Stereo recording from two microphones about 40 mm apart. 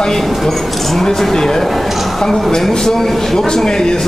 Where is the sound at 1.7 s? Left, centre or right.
Centre.